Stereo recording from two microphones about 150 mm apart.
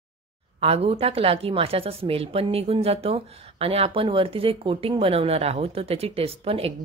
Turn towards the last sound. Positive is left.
turn(degrees=-40)  # may be behind; listen again after turning